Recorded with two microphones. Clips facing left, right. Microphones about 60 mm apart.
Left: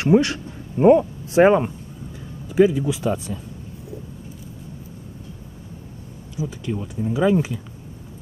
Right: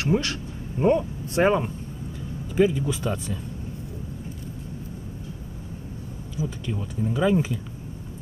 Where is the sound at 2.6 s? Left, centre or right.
Centre.